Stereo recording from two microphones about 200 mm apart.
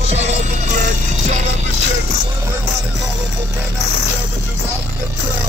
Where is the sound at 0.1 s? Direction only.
35° right (ahead or behind).